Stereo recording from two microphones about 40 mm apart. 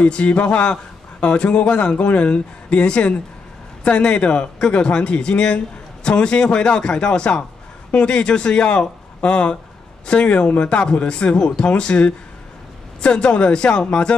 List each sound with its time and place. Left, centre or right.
0.0 s speech: left